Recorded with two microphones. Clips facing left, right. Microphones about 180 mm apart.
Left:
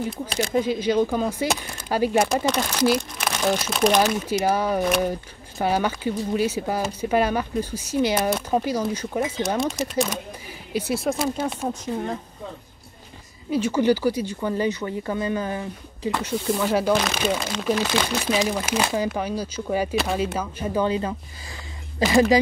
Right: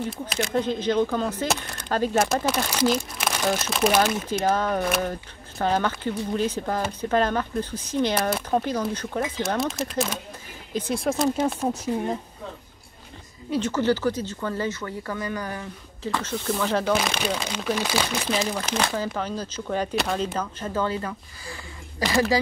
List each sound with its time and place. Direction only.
0.3 s speech: 30° left (ahead or behind)
0.6 s speech: 10° left (ahead or behind)
2.2 s speech: 5° right (ahead or behind)
3.0 s crumpling: centre (ahead or behind)
3.6 s speech: centre (ahead or behind)
8.6 s speech: 10° left (ahead or behind)
11.7 s speech: 10° right (ahead or behind)
13.5 s speech: 10° left (ahead or behind)
17.7 s speech: 5° right (ahead or behind); by 22.2 s 25° left (ahead or behind)